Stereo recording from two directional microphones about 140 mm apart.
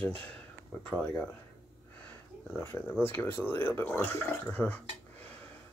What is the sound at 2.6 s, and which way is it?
Speech, 15° left (ahead or behind).